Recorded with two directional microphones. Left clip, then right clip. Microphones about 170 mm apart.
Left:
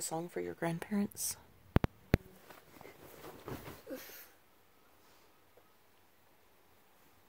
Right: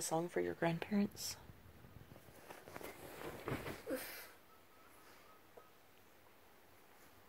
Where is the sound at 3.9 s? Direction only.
Centre (ahead or behind).